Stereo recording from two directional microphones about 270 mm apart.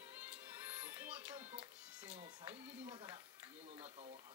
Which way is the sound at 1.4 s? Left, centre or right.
Right.